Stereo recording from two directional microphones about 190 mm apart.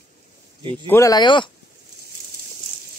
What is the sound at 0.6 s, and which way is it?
Speech, 25° right (ahead or behind).